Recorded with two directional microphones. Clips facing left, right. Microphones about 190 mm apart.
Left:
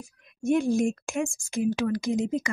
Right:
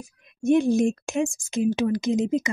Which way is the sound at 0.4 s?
20° right (ahead or behind).